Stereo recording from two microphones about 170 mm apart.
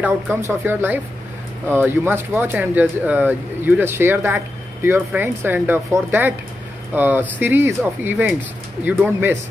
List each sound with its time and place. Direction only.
0.0 s speech: 15° right (ahead or behind)